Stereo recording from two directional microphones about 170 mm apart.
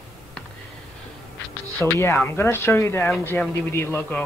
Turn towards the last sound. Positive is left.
turn(degrees=10)  # may be behind; listen again after turning